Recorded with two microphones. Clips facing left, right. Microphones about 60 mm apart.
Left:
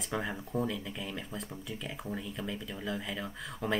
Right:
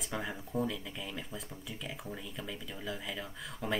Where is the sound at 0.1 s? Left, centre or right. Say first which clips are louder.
Left 3 dB; centre.